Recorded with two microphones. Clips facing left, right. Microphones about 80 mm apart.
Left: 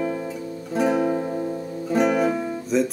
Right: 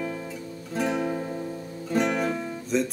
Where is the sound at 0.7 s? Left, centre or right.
Centre.